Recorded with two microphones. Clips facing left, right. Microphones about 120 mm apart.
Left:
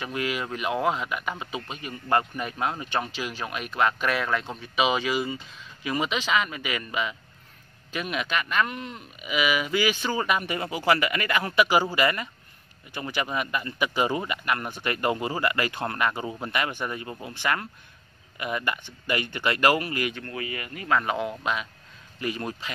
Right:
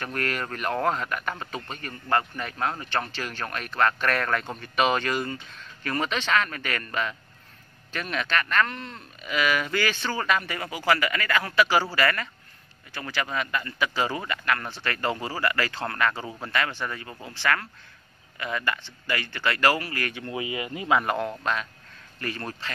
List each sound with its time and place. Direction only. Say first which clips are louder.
0.0 s speech: left 1 dB; 5° left (ahead or behind)
20.2 s speech: right 3 dB; 15° right (ahead or behind)
21.0 s speech: right 1 dB; centre (ahead or behind)